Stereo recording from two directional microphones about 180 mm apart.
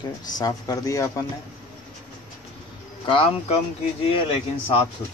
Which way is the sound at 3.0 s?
30° left (ahead or behind).